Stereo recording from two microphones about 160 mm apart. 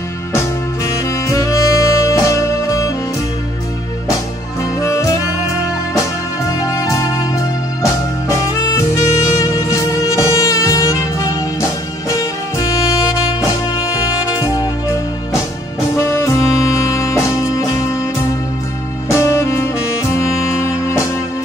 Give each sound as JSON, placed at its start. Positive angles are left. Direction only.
{"t": 0.8, "sound": "saxophone", "side_deg": 20}
{"t": 4.6, "sound": "music", "side_deg": 20}
{"t": 6.4, "sound": "music", "side_deg": 20}
{"t": 16.0, "sound": "music", "side_deg": 15}
{"t": 19.0, "sound": "saxophone", "side_deg": 15}